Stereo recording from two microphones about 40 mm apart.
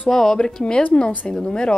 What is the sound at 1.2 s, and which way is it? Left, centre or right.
Speech, left.